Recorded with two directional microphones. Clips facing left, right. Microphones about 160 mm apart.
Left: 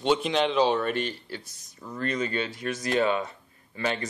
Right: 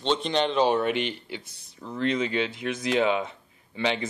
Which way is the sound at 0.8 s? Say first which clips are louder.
Right 2 dB; 15° right (ahead or behind).